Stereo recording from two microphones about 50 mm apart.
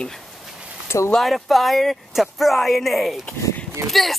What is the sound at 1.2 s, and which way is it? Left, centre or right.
Speech, centre.